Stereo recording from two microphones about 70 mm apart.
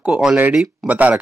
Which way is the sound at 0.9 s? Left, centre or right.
Right.